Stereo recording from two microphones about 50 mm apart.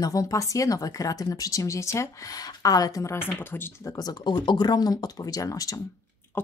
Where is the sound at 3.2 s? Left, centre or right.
Left.